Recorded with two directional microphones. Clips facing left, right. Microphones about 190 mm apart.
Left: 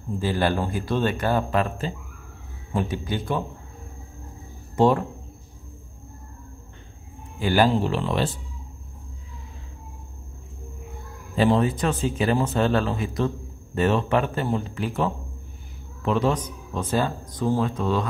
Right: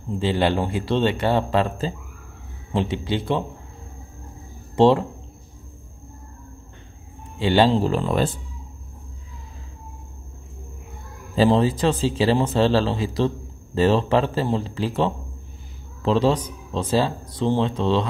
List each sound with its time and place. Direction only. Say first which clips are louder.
0.1 s speech: right 3 dB; 25° right (ahead or behind)
4.7 s speech: right 3 dB; 25° right (ahead or behind)
7.3 s speech: right 2 dB; 25° right (ahead or behind)
7.9 s speech: right 3 dB; 40° right (ahead or behind)
11.3 s a man's voice: right 3 dB; 30° right (ahead or behind)